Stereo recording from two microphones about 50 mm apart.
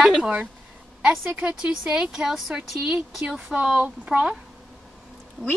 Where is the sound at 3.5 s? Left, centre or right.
Right.